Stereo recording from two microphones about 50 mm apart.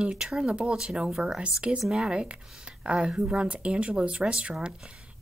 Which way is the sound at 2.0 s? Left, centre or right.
Centre.